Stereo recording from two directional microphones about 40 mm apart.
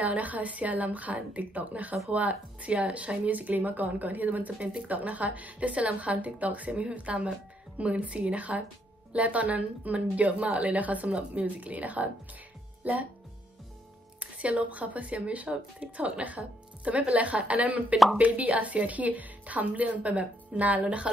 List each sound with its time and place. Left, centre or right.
0.0 s speech: right
14.2 s speech: right